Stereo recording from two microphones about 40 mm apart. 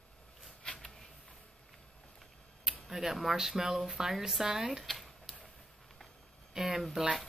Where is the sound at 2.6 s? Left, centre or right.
Centre.